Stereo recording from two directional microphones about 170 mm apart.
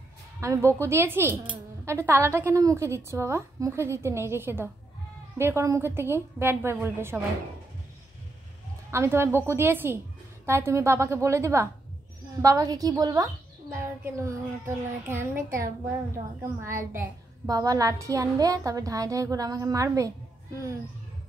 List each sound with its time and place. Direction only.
0.4 s a woman's voice: 15° right (ahead or behind)
8.9 s a woman's voice: 15° right (ahead or behind)
16.9 s a woman's voice: 20° right (ahead or behind)